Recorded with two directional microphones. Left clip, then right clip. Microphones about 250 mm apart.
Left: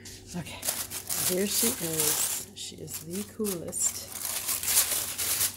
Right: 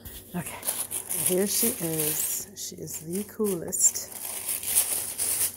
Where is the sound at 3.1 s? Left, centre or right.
Centre.